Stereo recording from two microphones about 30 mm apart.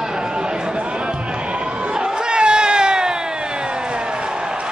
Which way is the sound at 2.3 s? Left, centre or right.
Right.